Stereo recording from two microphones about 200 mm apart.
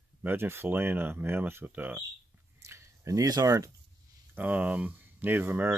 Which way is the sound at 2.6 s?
15° right (ahead or behind).